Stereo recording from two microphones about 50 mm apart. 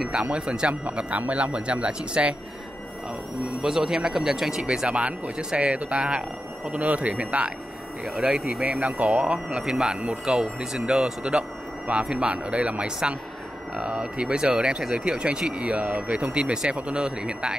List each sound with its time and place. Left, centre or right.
0.1 s speech: right
3.6 s speech: centre
4.6 s speech: right
8.0 s speech: centre
8.7 s speech: right
9.6 s speech: centre